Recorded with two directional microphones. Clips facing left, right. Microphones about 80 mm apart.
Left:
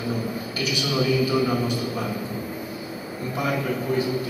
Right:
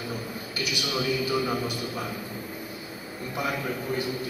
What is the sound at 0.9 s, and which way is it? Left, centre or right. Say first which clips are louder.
Speech: left 5 dB; centre.